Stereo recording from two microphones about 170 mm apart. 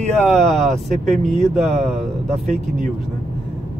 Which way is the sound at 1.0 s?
45° right (ahead or behind).